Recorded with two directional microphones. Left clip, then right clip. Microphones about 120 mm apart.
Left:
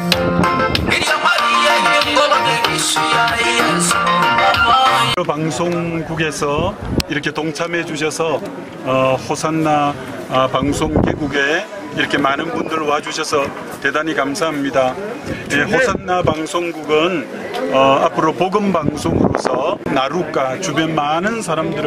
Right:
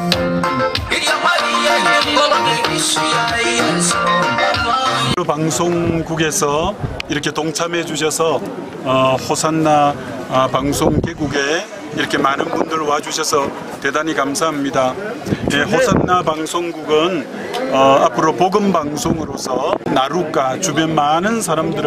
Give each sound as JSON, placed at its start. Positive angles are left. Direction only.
{"t": 0.1, "sound": "music", "side_deg": 20}
{"t": 5.2, "sound": "a man's voice", "side_deg": -15}